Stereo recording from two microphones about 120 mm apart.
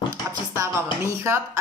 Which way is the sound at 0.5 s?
25° right (ahead or behind).